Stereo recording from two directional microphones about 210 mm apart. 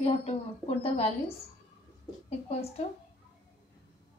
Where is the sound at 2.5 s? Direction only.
30° left (ahead or behind).